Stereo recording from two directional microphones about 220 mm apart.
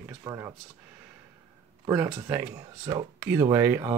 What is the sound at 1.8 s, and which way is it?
Speech, 5° right (ahead or behind).